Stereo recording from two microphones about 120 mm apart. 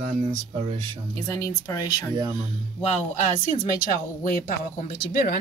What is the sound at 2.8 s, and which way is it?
Speech, 60° left (ahead or behind).